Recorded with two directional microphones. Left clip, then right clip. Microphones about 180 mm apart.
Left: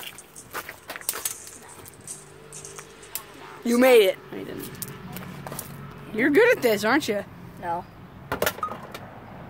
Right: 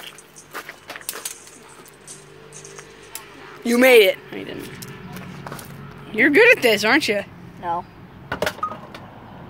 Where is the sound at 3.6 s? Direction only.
Centre (ahead or behind).